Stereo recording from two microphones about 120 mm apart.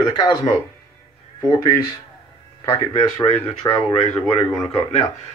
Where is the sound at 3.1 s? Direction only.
35° left (ahead or behind).